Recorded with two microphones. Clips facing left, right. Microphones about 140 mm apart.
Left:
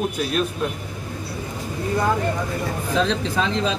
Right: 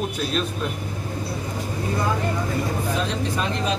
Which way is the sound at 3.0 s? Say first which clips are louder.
Left 4 dB; 90° left.